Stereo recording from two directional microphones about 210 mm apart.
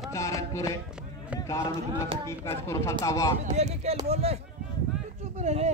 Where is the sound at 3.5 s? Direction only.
30° right (ahead or behind).